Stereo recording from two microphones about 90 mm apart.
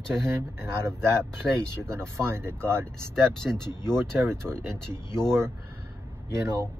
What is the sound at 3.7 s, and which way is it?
Speech, 50° left (ahead or behind).